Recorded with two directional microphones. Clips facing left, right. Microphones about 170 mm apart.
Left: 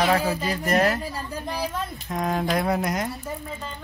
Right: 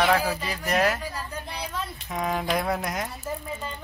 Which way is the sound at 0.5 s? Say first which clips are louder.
Left 2 dB; centre (ahead or behind).